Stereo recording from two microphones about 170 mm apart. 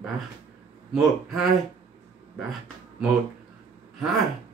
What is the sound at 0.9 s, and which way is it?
Speech, centre (ahead or behind).